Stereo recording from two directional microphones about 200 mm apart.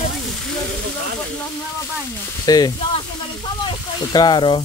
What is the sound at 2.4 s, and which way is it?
Speech, 20° left (ahead or behind).